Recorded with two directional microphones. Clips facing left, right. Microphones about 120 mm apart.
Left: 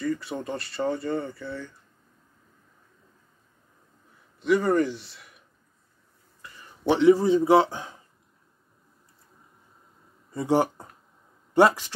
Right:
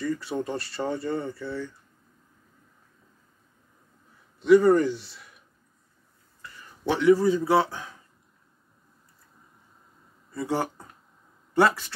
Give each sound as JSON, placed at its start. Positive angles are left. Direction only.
{"t": 0.0, "sound": "speech", "side_deg": 0}
{"t": 4.4, "sound": "speech", "side_deg": 0}
{"t": 6.8, "sound": "a man's voice", "side_deg": 20}
{"t": 10.3, "sound": "speech", "side_deg": 15}